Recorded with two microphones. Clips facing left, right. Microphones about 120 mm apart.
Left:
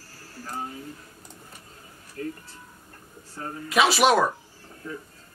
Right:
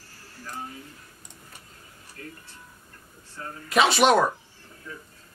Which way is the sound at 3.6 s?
Centre (ahead or behind).